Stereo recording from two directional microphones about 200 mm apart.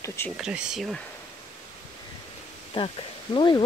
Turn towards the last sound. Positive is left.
turn(degrees=25)  # may be behind; listen again after turning